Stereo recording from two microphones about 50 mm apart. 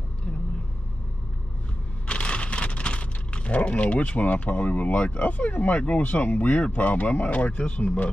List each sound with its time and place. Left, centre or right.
2.0 s speech: left